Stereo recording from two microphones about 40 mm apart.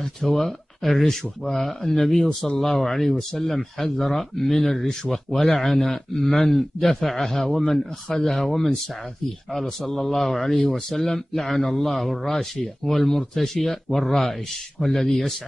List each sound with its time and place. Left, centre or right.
0.2 s a man's voice: centre